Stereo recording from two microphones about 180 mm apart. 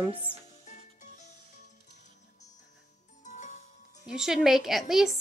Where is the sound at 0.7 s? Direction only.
40° left (ahead or behind).